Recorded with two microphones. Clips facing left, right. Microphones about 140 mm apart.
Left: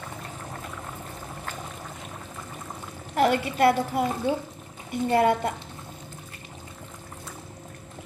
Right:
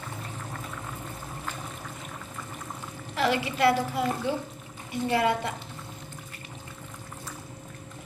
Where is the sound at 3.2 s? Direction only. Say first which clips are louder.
Left 4 dB; 50° left (ahead or behind).